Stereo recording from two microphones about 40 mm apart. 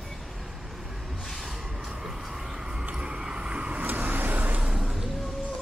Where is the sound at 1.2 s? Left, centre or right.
Centre.